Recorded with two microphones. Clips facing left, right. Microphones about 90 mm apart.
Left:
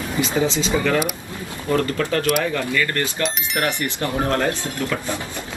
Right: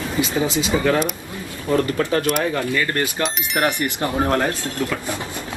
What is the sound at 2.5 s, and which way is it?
Speech, 25° right (ahead or behind).